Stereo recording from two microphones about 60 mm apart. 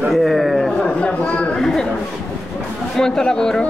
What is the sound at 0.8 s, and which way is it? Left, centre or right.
Speech, centre.